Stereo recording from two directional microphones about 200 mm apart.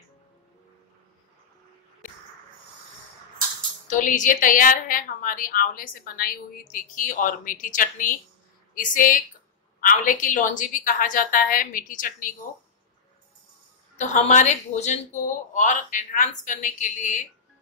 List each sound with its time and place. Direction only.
3.8 s a woman's voice: 40° left (ahead or behind)
13.9 s speech: 35° left (ahead or behind)